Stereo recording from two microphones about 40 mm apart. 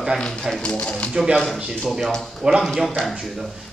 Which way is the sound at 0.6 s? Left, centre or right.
Left.